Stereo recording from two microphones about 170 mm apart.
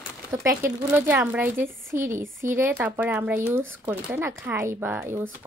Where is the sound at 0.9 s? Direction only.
10° right (ahead or behind).